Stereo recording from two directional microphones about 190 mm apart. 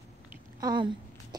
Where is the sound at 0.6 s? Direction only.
20° right (ahead or behind).